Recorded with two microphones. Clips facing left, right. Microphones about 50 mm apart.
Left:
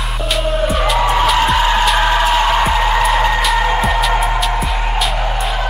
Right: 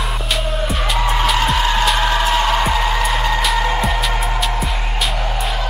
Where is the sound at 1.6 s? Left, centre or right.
Centre.